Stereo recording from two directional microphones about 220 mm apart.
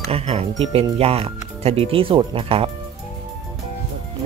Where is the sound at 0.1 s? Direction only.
25° right (ahead or behind).